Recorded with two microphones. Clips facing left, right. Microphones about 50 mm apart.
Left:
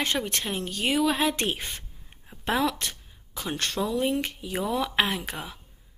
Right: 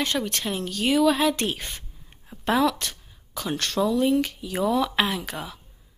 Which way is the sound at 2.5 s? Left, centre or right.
Centre.